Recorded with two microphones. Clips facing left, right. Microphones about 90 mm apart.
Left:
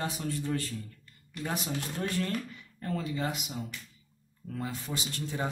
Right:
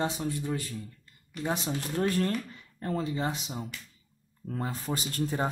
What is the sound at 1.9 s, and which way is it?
Speech, 40° right (ahead or behind).